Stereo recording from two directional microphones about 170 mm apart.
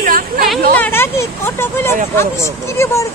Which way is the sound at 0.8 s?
15° left (ahead or behind).